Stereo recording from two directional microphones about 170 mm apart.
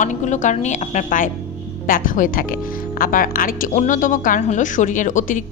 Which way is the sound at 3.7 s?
45° left (ahead or behind).